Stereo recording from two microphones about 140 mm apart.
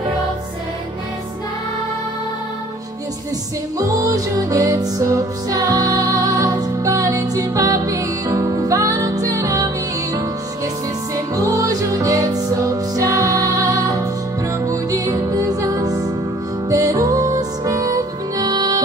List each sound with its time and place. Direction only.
3.7 s music: 25° right (ahead or behind)
11.1 s music: 25° right (ahead or behind)